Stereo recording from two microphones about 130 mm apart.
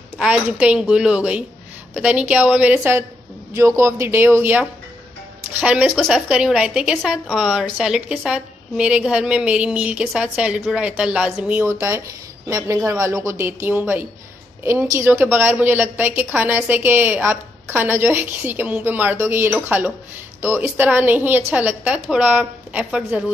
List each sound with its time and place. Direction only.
0.2 s a woman's voice: 10° right (ahead or behind)
12.4 s a woman's voice: 25° right (ahead or behind); by 23.3 s 10° right (ahead or behind)